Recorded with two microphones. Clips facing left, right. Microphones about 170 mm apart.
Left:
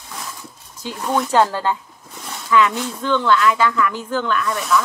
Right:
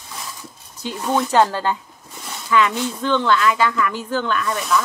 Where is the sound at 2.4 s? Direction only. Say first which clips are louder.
Left 1 dB; 25° right (ahead or behind).